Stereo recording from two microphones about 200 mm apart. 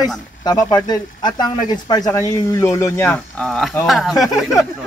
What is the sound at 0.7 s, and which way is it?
Speech, 20° left (ahead or behind).